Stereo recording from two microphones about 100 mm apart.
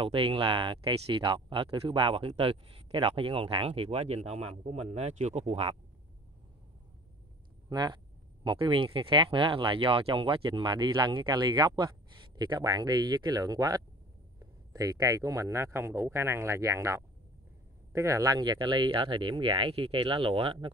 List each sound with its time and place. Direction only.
0.0 s speech: 65° right (ahead or behind); by 5.8 s 90° right
7.7 s speech: 45° right (ahead or behind)
8.5 s speech: 55° right (ahead or behind)